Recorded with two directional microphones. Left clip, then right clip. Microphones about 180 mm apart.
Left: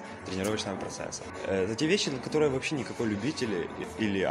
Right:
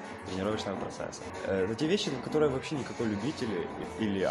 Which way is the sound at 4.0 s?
30° left (ahead or behind).